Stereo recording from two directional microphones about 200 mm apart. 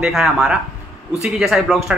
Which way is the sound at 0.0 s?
Centre (ahead or behind).